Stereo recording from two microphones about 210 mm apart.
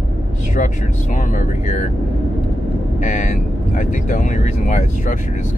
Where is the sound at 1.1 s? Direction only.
35° left (ahead or behind).